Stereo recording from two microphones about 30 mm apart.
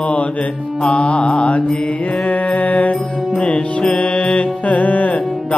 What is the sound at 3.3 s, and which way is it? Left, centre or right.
Music, left.